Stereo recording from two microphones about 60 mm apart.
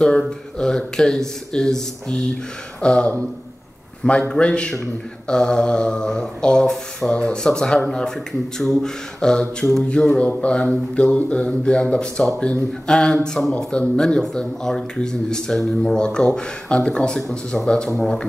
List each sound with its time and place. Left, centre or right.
0.6 s speech: centre
10.1 s speech: left